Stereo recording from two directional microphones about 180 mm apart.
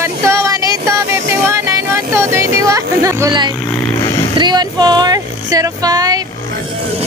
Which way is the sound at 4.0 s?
25° left (ahead or behind).